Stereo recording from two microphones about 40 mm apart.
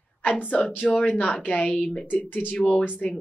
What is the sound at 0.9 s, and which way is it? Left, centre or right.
A woman's voice, left.